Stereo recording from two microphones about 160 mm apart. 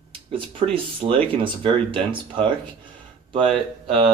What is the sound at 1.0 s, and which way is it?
Speech, 35° right (ahead or behind).